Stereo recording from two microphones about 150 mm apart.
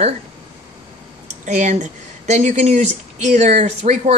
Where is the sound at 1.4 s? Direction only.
55° right (ahead or behind).